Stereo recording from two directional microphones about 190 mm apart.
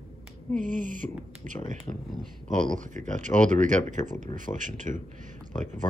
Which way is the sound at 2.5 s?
40° right (ahead or behind).